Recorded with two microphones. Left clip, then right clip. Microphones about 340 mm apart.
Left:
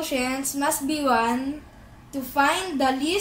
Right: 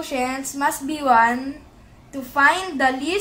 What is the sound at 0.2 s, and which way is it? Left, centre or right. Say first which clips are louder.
Speech: right 3 dB; centre.